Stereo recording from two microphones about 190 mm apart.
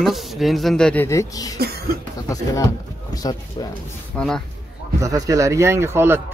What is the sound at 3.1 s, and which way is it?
Speech, 20° left (ahead or behind).